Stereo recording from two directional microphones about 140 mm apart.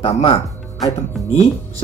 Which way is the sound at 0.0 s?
45° left (ahead or behind).